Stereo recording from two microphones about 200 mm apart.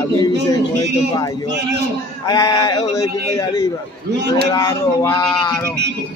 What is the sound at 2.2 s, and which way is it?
Speech, 20° left (ahead or behind).